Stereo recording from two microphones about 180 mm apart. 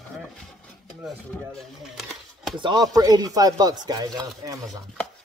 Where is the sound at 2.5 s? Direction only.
25° right (ahead or behind).